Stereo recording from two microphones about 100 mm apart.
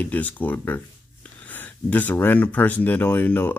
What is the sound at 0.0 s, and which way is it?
Speech, 15° left (ahead or behind).